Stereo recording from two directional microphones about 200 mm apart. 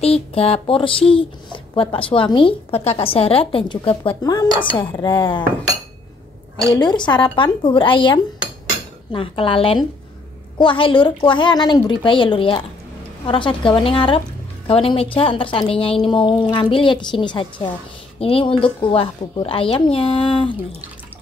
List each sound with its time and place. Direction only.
0.0 s a woman's voice: 30° left (ahead or behind)
6.7 s a woman's voice: 20° left (ahead or behind)